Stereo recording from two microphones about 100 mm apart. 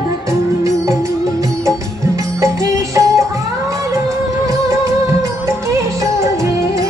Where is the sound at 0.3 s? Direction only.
35° right (ahead or behind).